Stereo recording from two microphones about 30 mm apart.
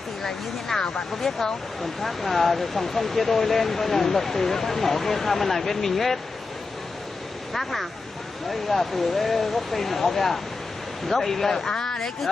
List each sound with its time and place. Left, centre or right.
0.7 s speech: centre
8.5 s speech: centre